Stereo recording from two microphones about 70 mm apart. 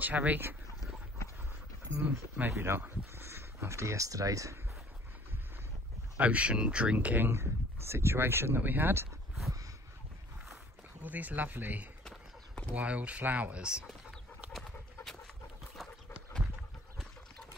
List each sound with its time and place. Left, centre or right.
0.0 s speech: right
2.0 s speech: right
2.5 s speech: right
6.1 s speech: right
11.0 s speech: right